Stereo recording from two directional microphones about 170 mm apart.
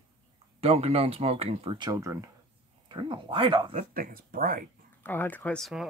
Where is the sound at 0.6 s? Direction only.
35° right (ahead or behind).